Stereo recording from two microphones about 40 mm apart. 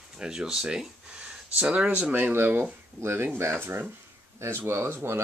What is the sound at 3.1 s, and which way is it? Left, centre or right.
Speech, right.